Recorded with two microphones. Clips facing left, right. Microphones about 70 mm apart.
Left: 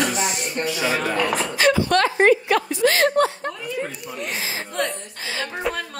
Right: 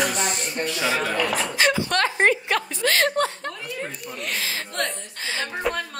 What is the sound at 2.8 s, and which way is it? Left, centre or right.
Speech, left.